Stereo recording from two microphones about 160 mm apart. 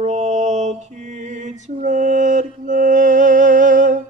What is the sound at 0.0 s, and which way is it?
Mantra, 45° right (ahead or behind).